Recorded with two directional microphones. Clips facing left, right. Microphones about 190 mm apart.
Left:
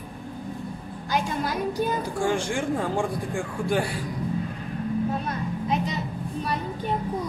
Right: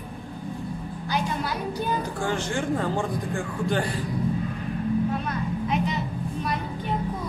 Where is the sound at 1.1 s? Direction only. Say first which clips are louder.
Left 2 dB; 45° left (ahead or behind).